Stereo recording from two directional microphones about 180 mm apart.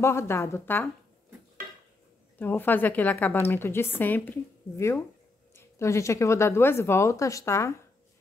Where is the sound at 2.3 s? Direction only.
10° left (ahead or behind).